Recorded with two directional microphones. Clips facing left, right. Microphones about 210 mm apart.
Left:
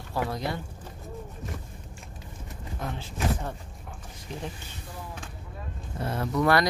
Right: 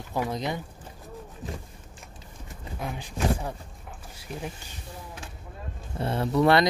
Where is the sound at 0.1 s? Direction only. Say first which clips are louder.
Right 1 dB; 20° right (ahead or behind).